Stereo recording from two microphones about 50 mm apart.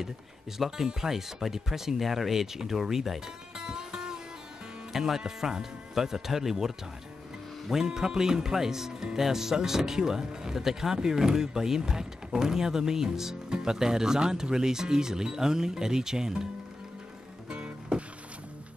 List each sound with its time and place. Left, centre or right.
0.6 s speech: centre
17.5 s music: right